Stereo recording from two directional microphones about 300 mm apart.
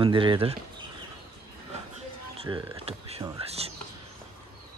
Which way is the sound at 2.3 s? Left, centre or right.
Centre.